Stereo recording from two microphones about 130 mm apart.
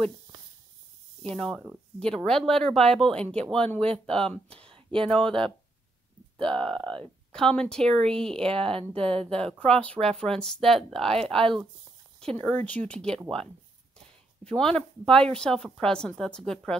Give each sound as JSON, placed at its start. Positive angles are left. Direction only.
{"t": 1.3, "sound": "a woman's voice", "side_deg": 5}
{"t": 4.5, "sound": "a sound", "side_deg": -45}
{"t": 6.4, "sound": "a woman's voice", "side_deg": 5}
{"t": 8.5, "sound": "speech", "side_deg": -45}
{"t": 9.2, "sound": "a woman's voice", "side_deg": 5}
{"t": 14.4, "sound": "a woman's voice", "side_deg": 5}